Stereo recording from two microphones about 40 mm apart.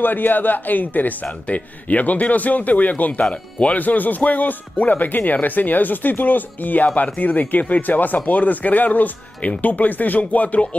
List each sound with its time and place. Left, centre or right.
0.0 s speech: left
3.3 s speech: left
3.7 s speech: left